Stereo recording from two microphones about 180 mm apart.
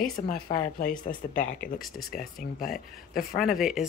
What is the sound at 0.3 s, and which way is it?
Speech, 55° left (ahead or behind).